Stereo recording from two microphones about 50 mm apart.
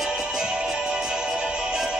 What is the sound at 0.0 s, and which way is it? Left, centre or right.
Music, centre.